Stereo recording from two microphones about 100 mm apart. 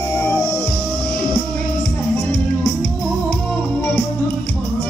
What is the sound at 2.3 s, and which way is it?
Music, 15° left (ahead or behind).